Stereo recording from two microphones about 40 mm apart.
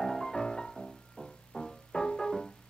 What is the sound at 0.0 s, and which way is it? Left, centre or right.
Music, centre.